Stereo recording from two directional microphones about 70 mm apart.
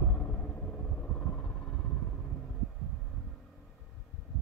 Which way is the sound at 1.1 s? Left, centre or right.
Left.